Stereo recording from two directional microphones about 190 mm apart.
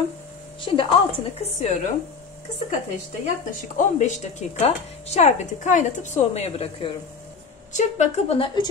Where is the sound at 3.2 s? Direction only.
40° left (ahead or behind).